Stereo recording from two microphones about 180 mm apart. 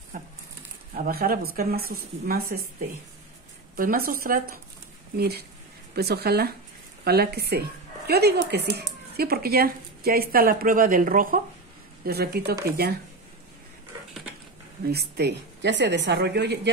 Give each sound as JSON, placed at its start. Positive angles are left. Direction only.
{"t": 0.9, "sound": "a woman's voice", "side_deg": -55}
{"t": 3.7, "sound": "a woman's voice", "side_deg": -55}
{"t": 12.0, "sound": "a woman's voice", "side_deg": -60}
{"t": 14.9, "sound": "a woman's voice", "side_deg": -65}